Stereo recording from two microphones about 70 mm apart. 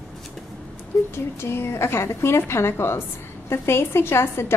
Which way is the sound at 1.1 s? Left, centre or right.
Left.